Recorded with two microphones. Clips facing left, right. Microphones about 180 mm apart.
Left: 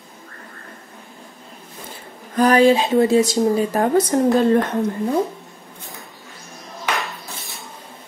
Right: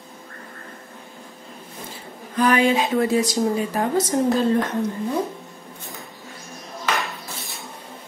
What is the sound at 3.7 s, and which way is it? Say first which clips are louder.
Speech: left 4 dB; 55° left (ahead or behind).